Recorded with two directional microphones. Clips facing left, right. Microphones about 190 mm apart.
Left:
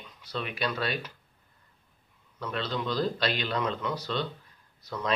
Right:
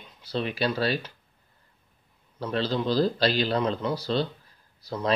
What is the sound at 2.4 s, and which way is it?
Speech, 30° right (ahead or behind).